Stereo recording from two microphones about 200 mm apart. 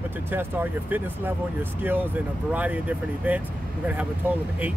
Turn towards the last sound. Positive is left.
turn(degrees=-5)  # may be behind; listen again after turning